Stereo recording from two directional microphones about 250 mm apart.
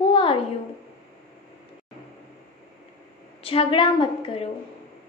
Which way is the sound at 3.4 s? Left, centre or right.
Left.